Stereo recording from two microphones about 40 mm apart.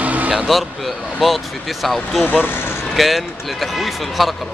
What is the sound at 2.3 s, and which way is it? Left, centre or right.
Speech, left.